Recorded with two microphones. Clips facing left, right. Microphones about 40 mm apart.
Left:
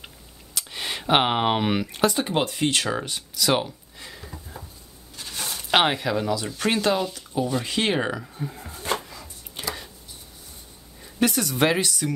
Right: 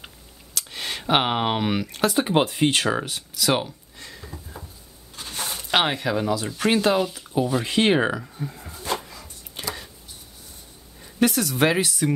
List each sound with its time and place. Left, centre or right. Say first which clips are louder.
0.6 s speech: even; centre
2.1 s speech: right 4 dB; centre
2.9 s a sound: right 2 dB; centre
5.1 s a sound: right 1 dB; right
5.7 s speech: left 2 dB; centre
6.0 s speech: right 1 dB; centre
8.2 s speech: even; centre
9.0 s a sound: even; centre
11.0 s speech: right 2 dB; centre